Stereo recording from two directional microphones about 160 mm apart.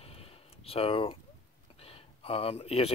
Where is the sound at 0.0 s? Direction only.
40° left (ahead or behind).